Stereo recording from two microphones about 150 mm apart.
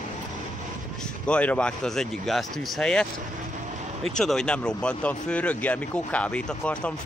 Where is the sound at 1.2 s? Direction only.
10° left (ahead or behind).